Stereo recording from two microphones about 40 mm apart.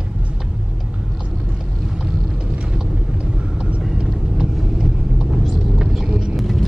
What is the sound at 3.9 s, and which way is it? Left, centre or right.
Vehicle, centre.